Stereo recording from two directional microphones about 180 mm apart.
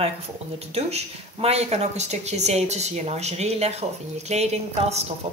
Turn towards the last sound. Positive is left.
turn(degrees=-35)  # may be behind; listen again after turning